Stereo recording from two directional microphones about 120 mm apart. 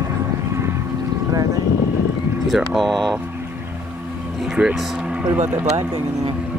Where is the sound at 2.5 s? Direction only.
Centre (ahead or behind).